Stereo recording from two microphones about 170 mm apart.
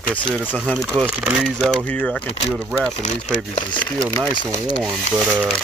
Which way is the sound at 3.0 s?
45° left (ahead or behind).